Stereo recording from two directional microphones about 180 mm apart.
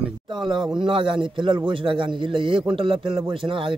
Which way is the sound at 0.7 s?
30° right (ahead or behind).